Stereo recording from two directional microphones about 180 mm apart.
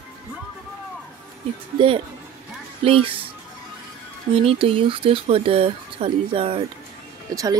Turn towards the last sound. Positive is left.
turn(degrees=-20)  # may be behind; listen again after turning